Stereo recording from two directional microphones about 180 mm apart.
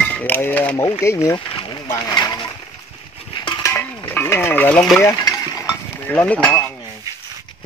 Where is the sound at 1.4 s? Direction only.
30° left (ahead or behind).